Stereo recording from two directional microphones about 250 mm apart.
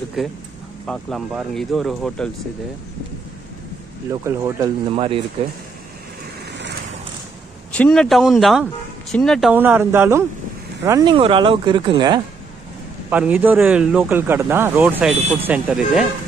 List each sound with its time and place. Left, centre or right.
0.2 s speech: centre
4.1 s speech: centre
4.9 s speech: right
7.7 s speech: centre
13.1 s speech: centre